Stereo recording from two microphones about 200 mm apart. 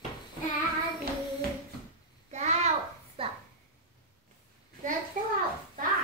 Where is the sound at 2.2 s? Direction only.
35° right (ahead or behind).